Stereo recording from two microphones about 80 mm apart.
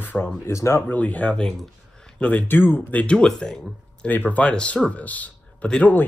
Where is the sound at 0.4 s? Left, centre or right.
Left.